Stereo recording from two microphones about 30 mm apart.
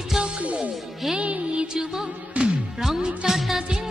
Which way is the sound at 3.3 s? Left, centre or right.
Centre.